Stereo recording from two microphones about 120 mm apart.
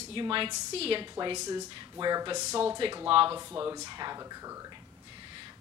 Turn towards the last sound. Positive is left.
turn(degrees=-25)  # may be behind; listen again after turning